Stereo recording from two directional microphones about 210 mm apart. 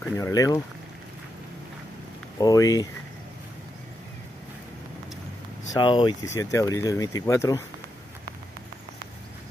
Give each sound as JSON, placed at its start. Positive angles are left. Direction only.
{"t": 0.0, "sound": "speech", "side_deg": 15}
{"t": 2.3, "sound": "speech", "side_deg": 15}
{"t": 5.7, "sound": "speech", "side_deg": 20}